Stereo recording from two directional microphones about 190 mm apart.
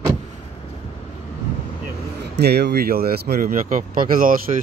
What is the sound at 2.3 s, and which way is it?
Speech, 60° right (ahead or behind).